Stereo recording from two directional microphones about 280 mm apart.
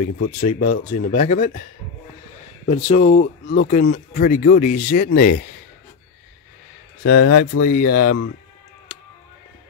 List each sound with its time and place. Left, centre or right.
0.4 s speech: left
2.7 s speech: left
7.0 s speech: left